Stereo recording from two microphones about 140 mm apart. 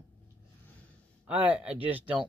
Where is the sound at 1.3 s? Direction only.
10° right (ahead or behind).